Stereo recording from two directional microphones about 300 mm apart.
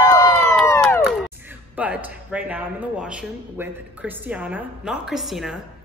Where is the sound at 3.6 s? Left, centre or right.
Centre.